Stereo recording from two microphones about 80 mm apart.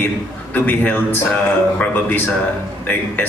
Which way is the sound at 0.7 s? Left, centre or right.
Left.